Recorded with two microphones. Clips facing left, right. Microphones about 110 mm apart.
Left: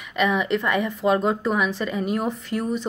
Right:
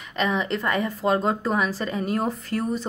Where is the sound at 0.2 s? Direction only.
35° right (ahead or behind).